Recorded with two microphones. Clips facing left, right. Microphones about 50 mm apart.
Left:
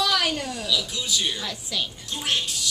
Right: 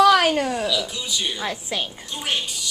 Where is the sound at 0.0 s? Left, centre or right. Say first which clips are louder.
Right 9 dB; right.